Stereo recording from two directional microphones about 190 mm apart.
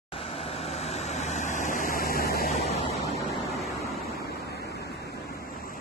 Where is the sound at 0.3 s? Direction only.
30° left (ahead or behind); by 2.5 s 55° left (ahead or behind).